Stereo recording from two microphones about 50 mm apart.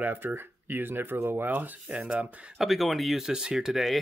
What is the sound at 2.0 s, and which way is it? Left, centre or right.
Speech, right.